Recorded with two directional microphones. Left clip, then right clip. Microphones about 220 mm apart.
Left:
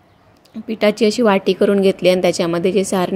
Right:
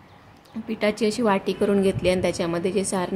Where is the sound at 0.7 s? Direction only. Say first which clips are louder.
Left 8 dB; 25° left (ahead or behind).